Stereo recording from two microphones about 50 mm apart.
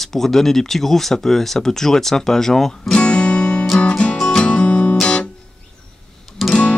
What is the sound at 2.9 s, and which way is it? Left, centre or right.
Guitar, left.